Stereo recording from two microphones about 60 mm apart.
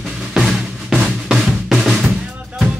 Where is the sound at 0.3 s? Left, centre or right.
Centre.